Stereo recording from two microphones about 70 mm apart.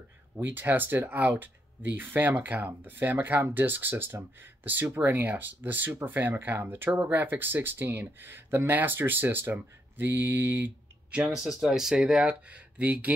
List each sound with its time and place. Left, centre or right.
0.4 s speech: right
11.3 s speech: centre; by 13.1 s right